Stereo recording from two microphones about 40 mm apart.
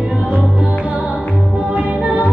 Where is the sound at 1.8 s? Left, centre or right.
Right.